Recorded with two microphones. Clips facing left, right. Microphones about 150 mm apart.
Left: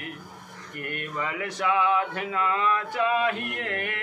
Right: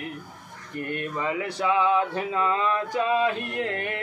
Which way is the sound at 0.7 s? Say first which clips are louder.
Right 3 dB; 25° right (ahead or behind).